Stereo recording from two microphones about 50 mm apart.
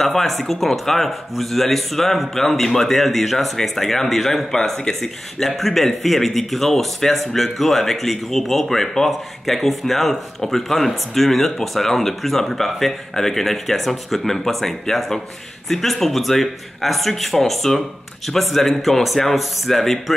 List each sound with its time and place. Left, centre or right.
0.0 s speech: centre